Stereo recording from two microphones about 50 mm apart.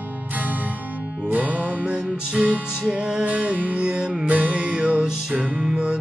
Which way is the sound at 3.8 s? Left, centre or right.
Right.